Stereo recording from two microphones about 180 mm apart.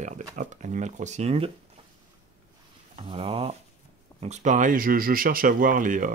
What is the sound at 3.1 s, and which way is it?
Speech, 30° right (ahead or behind).